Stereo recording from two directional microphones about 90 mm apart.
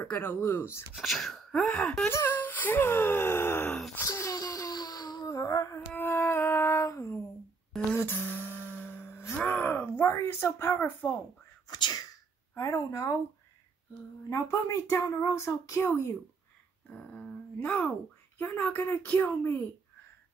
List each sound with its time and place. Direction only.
0.0 s a woman's voice: 20° left (ahead or behind)
0.9 s wail: centre (ahead or behind)
2.0 s speech: 25° left (ahead or behind)
4.1 s a sound: 35° left (ahead or behind)
5.3 s music: 35° left (ahead or behind)
5.8 s a sound: 20° left (ahead or behind)
7.9 s a sound: 25° left (ahead or behind)
9.4 s speech: 20° left (ahead or behind)
11.6 s sneeze: 50° left (ahead or behind)
14.3 s a woman's voice: 40° left (ahead or behind)
16.9 s a woman's voice: 15° left (ahead or behind)